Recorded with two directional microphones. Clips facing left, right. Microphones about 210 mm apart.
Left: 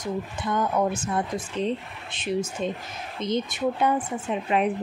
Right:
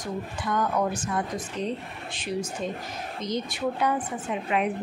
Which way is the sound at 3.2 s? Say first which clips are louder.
Left 4 dB; 25° left (ahead or behind).